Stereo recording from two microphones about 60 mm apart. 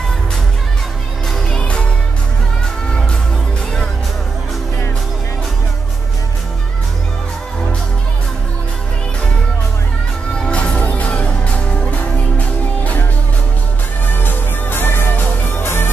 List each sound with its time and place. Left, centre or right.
1.5 s music: centre
10.4 s music: centre
14.0 s music: left